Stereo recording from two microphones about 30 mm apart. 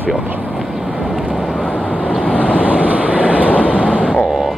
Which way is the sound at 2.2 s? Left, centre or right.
Left.